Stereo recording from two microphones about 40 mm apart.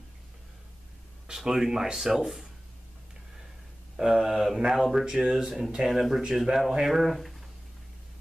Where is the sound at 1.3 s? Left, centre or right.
Centre.